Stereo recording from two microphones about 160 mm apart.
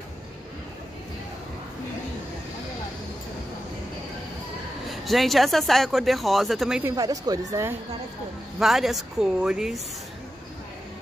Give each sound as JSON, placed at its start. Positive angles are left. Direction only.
{"t": 5.0, "sound": "speech", "side_deg": 0}
{"t": 6.8, "sound": "speech", "side_deg": -20}
{"t": 8.5, "sound": "speech", "side_deg": 0}